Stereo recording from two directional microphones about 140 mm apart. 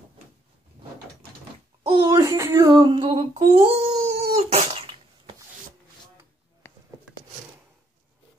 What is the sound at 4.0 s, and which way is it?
Dog, 50° right (ahead or behind).